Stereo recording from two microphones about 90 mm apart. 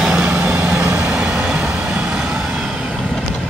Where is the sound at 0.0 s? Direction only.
10° right (ahead or behind).